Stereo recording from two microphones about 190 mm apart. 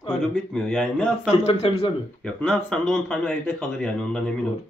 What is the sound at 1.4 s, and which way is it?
Speech, 30° left (ahead or behind).